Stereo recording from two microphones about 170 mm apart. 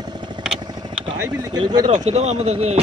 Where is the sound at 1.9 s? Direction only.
40° right (ahead or behind).